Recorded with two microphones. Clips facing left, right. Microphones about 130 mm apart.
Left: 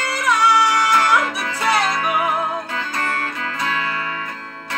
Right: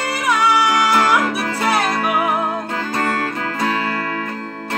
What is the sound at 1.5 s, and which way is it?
Music, 45° right (ahead or behind).